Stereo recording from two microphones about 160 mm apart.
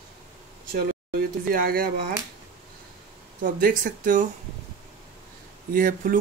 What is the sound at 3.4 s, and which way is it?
Speech, 55° right (ahead or behind).